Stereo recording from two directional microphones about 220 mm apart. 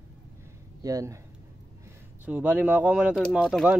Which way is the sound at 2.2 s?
5° right (ahead or behind).